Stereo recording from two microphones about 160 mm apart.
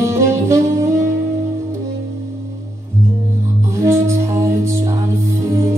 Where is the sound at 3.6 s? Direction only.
15° right (ahead or behind).